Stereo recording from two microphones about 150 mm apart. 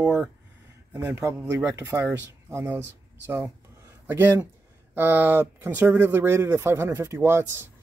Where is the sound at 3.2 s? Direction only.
15° right (ahead or behind).